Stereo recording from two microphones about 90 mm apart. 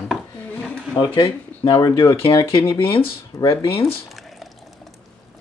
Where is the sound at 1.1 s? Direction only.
75° left (ahead or behind).